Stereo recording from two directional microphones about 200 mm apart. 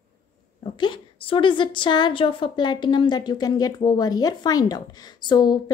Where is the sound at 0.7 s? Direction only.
25° left (ahead or behind).